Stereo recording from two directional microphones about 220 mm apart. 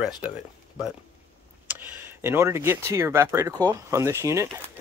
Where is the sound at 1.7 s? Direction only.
10° right (ahead or behind).